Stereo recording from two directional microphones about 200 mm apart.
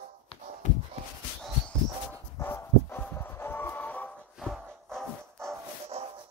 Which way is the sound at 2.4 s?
10° left (ahead or behind).